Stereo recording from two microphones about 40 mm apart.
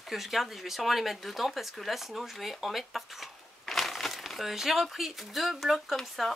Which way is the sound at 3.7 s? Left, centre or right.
Centre.